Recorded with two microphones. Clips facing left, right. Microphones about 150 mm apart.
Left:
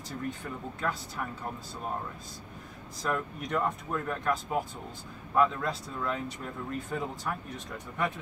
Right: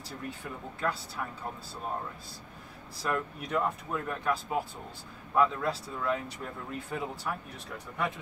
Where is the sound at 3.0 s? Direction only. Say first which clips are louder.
Even; 5° right (ahead or behind).